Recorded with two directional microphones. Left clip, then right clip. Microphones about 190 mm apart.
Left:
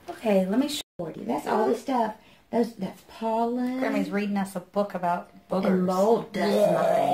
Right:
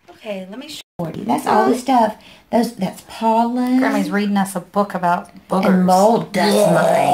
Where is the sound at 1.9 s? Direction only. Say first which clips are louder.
Right 11 dB; 50° right (ahead or behind).